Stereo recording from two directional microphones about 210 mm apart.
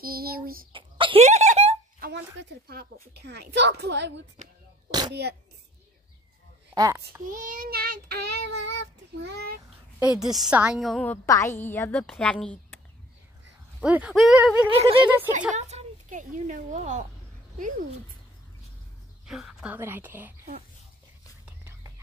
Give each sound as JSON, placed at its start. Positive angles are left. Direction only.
{"t": 0.0, "sound": "child singing", "side_deg": -45}
{"t": 0.7, "sound": "a sound", "side_deg": -25}
{"t": 2.0, "sound": "a sound", "side_deg": -50}
{"t": 2.7, "sound": "child singing", "side_deg": -50}
{"t": 6.7, "sound": "a child's voice", "side_deg": -15}
{"t": 7.2, "sound": "child singing", "side_deg": -40}
{"t": 9.9, "sound": "a woman's voice", "side_deg": -5}
{"t": 11.2, "sound": "a woman's voice", "side_deg": 15}
{"t": 13.7, "sound": "a woman's voice", "side_deg": -5}
{"t": 14.7, "sound": "speech", "side_deg": -25}
{"t": 15.0, "sound": "a woman's voice", "side_deg": -10}
{"t": 15.5, "sound": "a woman's voice", "side_deg": -35}
{"t": 19.2, "sound": "a woman's voice", "side_deg": -5}
{"t": 21.5, "sound": "whispering", "side_deg": -15}